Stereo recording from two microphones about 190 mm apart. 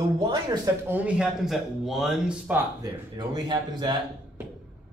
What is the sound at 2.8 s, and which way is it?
Speech, 20° right (ahead or behind).